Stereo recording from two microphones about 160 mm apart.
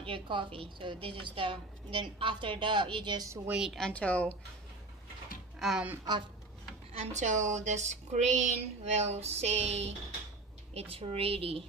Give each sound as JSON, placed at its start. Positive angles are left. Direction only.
{"t": 0.0, "sound": "a woman's voice", "side_deg": -30}
{"t": 3.4, "sound": "a woman's voice", "side_deg": -5}
{"t": 5.6, "sound": "speech", "side_deg": -5}
{"t": 6.9, "sound": "a woman's voice", "side_deg": -45}